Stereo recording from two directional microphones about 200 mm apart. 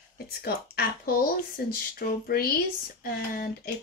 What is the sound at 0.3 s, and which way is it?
Speech, 50° left (ahead or behind).